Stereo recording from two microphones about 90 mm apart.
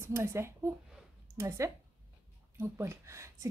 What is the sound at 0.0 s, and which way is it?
A woman's voice, 30° right (ahead or behind).